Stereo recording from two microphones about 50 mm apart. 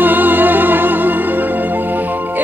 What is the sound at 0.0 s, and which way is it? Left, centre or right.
Music, right.